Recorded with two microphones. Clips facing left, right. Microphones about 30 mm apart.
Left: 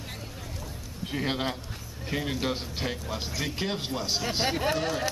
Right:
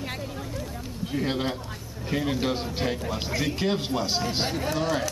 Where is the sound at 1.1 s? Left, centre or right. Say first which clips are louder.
Right 2 dB; centre.